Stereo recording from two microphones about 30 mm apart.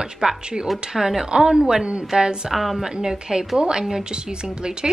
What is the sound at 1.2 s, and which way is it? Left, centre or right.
Speech, right.